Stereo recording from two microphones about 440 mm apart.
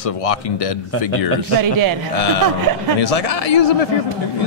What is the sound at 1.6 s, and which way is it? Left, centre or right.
Speech, right.